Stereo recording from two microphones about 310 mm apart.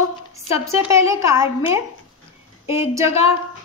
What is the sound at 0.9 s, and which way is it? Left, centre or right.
A woman's voice, centre.